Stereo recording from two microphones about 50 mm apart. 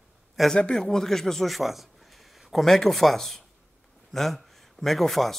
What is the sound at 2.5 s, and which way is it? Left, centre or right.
A man's voice, centre.